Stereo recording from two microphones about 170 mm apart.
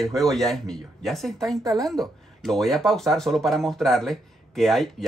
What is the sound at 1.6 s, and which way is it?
Speech, 20° right (ahead or behind).